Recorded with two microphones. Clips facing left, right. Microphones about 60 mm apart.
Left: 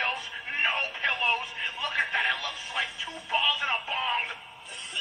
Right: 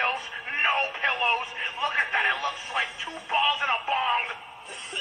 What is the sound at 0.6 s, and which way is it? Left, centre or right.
Radio, right.